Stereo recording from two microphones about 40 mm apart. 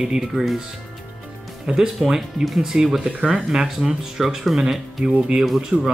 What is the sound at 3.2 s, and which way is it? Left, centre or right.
Speech, right.